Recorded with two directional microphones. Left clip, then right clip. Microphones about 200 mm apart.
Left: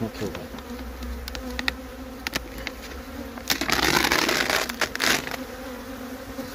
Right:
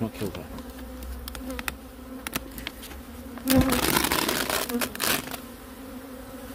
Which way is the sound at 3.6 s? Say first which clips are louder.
Left 3 dB; 35° right (ahead or behind).